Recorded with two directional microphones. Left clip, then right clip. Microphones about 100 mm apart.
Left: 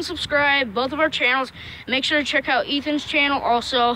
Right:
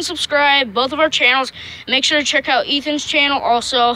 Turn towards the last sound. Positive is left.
turn(degrees=-10)  # may be behind; listen again after turning